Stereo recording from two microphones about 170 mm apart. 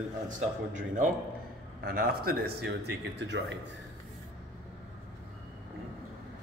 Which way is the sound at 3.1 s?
90° right.